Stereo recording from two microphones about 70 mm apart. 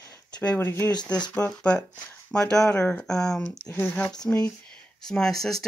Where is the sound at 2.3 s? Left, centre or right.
Centre.